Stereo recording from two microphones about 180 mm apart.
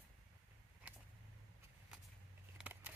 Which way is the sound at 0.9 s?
10° right (ahead or behind).